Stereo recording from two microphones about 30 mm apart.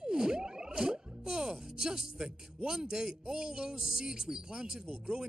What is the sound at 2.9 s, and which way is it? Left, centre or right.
A man's voice, right.